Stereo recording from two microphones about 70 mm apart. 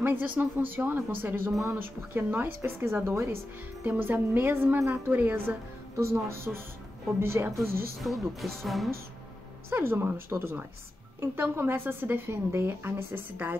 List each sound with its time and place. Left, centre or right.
0.0 s a woman's voice: right
3.8 s a woman's voice: right
5.9 s a woman's voice: right
8.0 s speech: centre
9.7 s a woman's voice: right